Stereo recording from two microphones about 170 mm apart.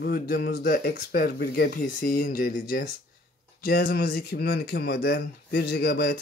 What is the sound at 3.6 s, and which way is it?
Speech, 70° left (ahead or behind).